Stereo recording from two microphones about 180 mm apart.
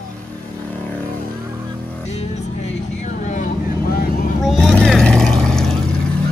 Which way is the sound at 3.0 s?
45° left (ahead or behind).